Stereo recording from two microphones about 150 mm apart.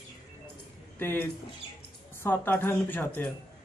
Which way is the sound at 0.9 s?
15° left (ahead or behind).